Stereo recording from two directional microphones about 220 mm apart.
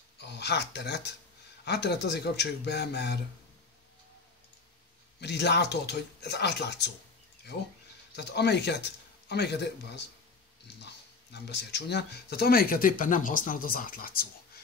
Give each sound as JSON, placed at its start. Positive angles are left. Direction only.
{"t": 0.2, "sound": "speech", "side_deg": 50}
{"t": 5.2, "sound": "speech", "side_deg": 50}
{"t": 8.2, "sound": "speech", "side_deg": 50}